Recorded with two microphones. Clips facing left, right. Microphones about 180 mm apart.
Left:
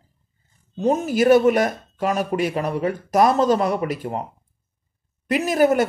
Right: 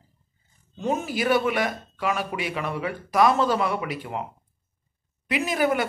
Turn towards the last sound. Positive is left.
turn(degrees=40)  # may be behind; listen again after turning